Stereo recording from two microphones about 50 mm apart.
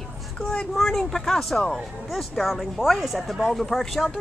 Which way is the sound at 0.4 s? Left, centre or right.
Centre.